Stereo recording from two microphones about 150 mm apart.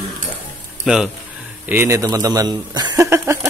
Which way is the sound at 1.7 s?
15° right (ahead or behind).